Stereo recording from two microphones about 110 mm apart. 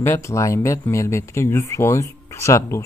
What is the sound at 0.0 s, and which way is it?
Speech, 25° left (ahead or behind).